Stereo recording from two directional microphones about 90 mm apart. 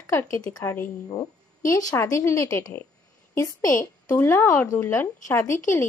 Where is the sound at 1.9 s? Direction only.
35° left (ahead or behind).